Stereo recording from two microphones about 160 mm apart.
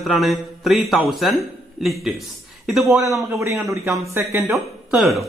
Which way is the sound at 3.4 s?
15° right (ahead or behind).